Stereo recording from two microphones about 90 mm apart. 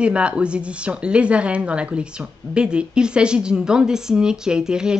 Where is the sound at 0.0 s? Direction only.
10° right (ahead or behind).